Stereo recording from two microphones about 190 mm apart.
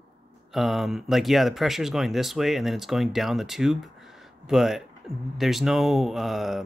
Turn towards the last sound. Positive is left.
turn(degrees=0)  # may be behind; listen again after turning